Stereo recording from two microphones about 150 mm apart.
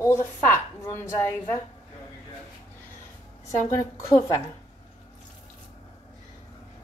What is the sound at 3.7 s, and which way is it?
Speech, 20° left (ahead or behind).